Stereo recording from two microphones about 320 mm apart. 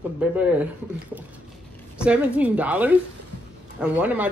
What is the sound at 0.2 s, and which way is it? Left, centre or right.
Speech, centre.